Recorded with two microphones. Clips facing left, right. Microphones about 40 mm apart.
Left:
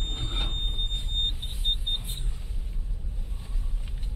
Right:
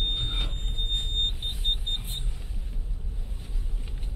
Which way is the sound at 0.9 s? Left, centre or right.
Right.